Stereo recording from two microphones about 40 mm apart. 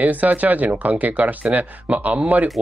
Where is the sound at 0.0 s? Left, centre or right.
Right.